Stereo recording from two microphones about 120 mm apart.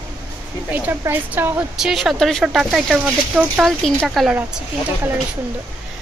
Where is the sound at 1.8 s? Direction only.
Centre (ahead or behind).